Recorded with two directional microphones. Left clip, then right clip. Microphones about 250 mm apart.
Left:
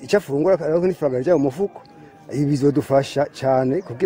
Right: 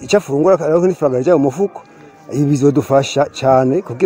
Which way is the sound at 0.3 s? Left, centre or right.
Centre.